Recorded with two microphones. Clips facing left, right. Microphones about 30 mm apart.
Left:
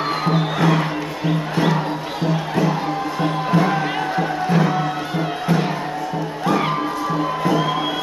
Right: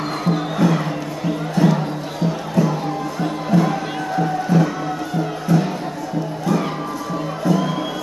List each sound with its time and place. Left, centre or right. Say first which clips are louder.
0.2 s music: right 2 dB; left